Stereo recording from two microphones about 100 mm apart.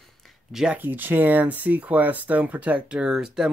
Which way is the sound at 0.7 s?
20° right (ahead or behind).